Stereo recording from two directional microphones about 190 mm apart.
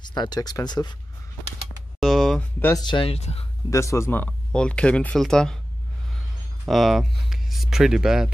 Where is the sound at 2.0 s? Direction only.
Centre (ahead or behind).